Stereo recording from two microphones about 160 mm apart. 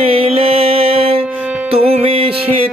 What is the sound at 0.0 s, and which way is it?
Music, 35° right (ahead or behind).